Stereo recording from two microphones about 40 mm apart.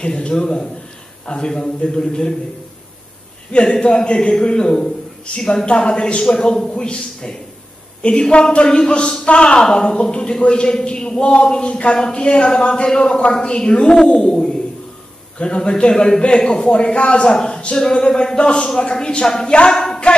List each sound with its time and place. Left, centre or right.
0.0 s a man's voice: left
3.5 s a man's voice: centre
20.1 s a capella: left